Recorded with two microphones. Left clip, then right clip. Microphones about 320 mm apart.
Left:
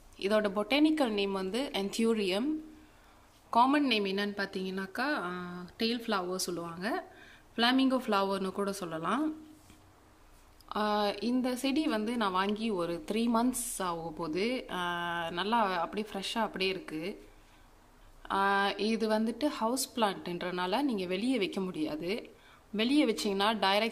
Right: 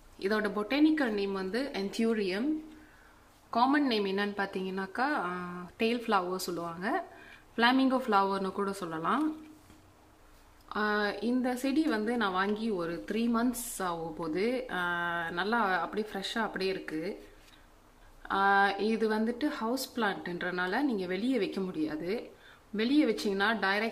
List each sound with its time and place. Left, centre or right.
0.2 s speech: centre
3.4 s a woman's voice: centre
10.7 s a woman's voice: centre
18.2 s speech: centre